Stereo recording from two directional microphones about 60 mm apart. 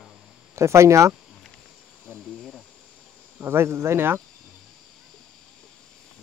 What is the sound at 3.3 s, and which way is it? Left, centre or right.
Speech, right.